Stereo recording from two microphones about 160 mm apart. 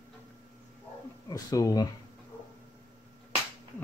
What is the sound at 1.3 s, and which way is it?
Speech, 25° left (ahead or behind).